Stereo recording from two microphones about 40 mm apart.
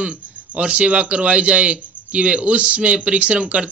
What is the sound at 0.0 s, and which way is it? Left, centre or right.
A man's voice, right.